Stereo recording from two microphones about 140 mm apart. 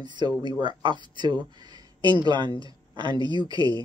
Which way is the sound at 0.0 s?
30° right (ahead or behind).